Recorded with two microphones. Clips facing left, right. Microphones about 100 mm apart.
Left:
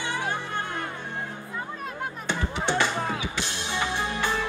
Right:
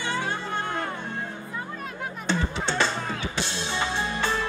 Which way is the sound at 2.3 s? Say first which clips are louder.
Even; 15° left (ahead or behind).